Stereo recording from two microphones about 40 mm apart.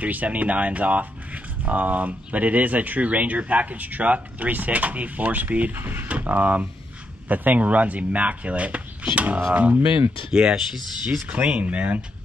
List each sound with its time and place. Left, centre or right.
0.0 s speech: right
5.7 s speech: right
6.0 s speech: right
11.2 s speech: right